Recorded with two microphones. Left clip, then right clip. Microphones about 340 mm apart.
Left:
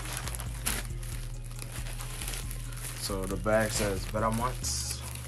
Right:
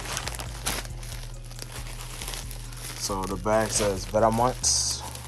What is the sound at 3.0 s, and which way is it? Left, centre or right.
Speech, centre.